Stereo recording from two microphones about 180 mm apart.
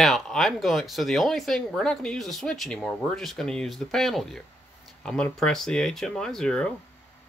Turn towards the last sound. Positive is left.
turn(degrees=5)  # may be behind; listen again after turning